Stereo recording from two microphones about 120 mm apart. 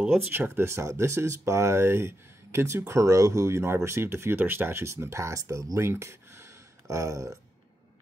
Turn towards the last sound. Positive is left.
turn(degrees=-25)  # may be behind; listen again after turning